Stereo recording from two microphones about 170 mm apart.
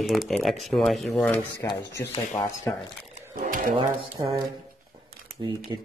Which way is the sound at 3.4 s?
55° right (ahead or behind).